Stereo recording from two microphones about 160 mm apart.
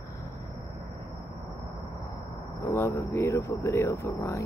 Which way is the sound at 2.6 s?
20° left (ahead or behind).